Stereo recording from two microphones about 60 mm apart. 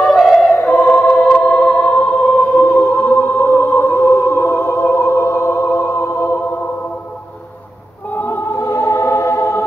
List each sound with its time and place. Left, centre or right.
0.0 s choir: centre
0.5 s choir: left
2.6 s music: left
8.1 s choir: left